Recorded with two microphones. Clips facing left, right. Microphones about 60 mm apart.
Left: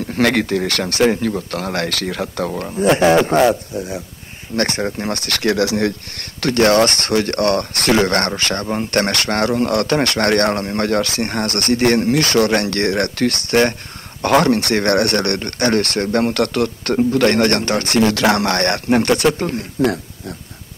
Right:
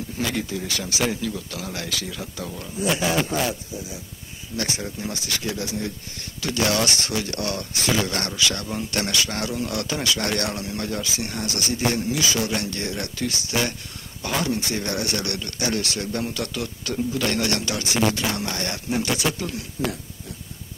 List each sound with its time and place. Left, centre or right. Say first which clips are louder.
0.1 s speech: left 12 dB; left